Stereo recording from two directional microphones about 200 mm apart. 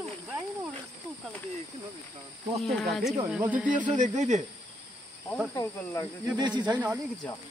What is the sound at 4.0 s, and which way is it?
Speech, 35° right (ahead or behind).